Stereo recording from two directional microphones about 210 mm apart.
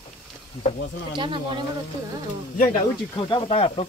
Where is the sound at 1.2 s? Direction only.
25° right (ahead or behind).